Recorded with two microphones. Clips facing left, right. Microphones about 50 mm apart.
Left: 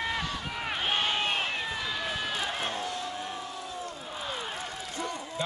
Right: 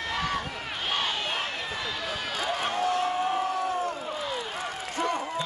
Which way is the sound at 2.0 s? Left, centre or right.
Centre.